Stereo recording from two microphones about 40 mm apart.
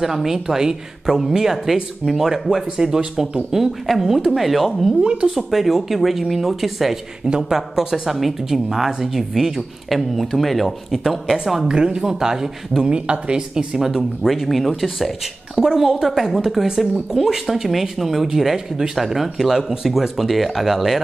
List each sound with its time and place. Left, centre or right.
0.0 s speech: centre
3.5 s speech: centre
5.0 s speech: right
5.3 s speech: centre
11.7 s speech: centre
12.9 s speech: right
13.7 s speech: centre
15.6 s speech: centre